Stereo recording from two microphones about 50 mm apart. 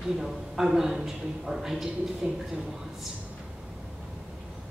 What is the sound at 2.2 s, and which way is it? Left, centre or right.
Speech, right.